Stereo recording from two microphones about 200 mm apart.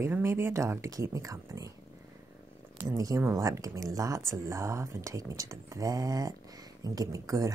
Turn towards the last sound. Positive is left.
turn(degrees=-15)  # may be behind; listen again after turning